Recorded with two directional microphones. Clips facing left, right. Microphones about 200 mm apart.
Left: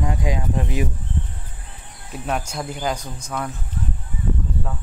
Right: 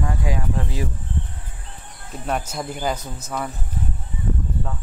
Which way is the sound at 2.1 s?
Centre (ahead or behind).